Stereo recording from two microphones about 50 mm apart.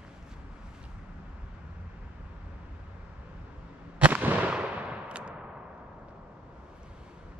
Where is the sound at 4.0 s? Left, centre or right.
Right.